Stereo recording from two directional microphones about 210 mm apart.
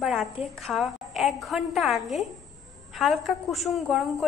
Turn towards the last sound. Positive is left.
turn(degrees=0)  # may be behind; listen again after turning